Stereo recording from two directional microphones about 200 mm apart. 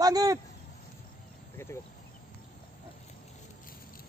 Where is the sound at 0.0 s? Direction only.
20° right (ahead or behind).